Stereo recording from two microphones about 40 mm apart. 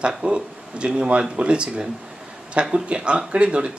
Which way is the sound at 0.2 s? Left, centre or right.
Right.